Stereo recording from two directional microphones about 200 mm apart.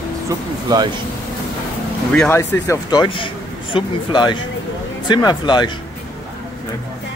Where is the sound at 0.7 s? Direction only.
20° right (ahead or behind).